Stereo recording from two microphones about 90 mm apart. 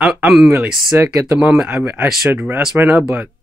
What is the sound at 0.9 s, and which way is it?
Speech, 25° right (ahead or behind).